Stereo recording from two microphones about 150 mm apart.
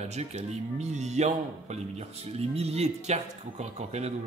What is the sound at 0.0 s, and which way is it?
Speech, 45° right (ahead or behind).